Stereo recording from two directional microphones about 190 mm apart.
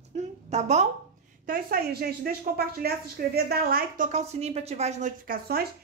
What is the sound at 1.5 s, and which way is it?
A woman's voice, 55° right (ahead or behind).